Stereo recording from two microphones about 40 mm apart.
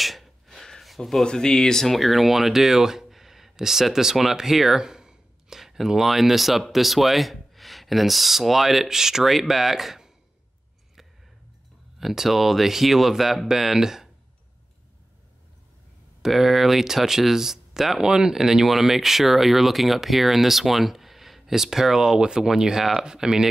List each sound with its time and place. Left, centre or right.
0.0 s a sound: centre
1.2 s speech: centre
4.8 s a sound: centre
5.6 s speech: centre
12.0 s speech: centre
16.3 s speech: centre